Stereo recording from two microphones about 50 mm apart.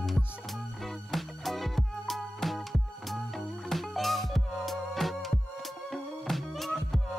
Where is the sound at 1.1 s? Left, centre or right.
Centre.